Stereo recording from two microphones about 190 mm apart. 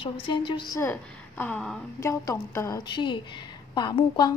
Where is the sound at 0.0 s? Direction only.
25° left (ahead or behind).